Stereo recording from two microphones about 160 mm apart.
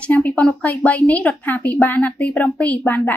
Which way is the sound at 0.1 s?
10° left (ahead or behind).